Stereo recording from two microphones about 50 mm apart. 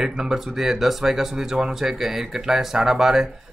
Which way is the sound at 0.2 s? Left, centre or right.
Centre.